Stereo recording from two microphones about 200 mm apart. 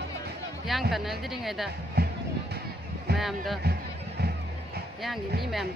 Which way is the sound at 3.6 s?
50° right (ahead or behind).